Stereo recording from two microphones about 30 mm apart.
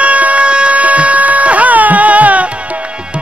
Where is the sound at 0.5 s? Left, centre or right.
Right.